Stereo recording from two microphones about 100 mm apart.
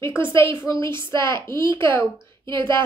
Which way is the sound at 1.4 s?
20° left (ahead or behind).